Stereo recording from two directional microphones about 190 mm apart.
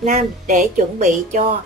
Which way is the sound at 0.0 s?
40° right (ahead or behind).